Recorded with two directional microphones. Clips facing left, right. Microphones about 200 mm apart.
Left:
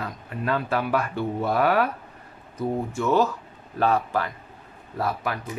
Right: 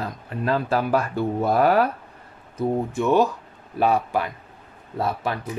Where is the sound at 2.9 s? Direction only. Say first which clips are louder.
Right 2 dB; 15° right (ahead or behind).